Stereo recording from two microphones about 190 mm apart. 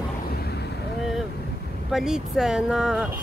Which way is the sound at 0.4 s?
60° left (ahead or behind).